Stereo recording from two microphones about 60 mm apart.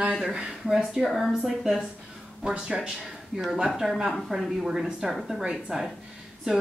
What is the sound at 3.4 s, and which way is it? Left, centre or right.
A woman's voice, centre.